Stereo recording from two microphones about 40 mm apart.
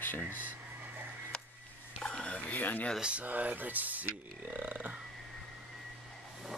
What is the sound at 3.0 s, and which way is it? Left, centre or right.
Speech, right.